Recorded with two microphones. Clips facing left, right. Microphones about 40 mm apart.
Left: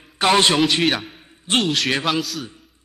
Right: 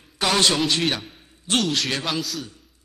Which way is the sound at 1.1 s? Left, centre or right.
Left.